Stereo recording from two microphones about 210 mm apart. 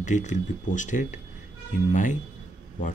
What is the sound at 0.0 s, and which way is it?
Speech, 35° left (ahead or behind).